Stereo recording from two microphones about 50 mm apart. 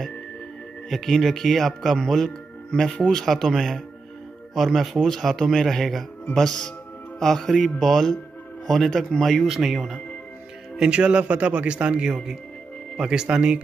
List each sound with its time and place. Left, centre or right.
0.8 s speech: centre
10.8 s a man's voice: right